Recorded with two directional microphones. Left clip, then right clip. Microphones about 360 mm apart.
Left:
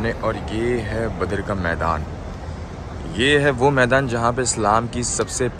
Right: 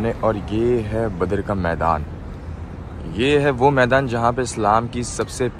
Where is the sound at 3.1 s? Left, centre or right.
Centre.